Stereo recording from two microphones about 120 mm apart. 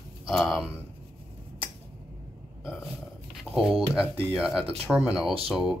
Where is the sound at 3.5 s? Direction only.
10° right (ahead or behind).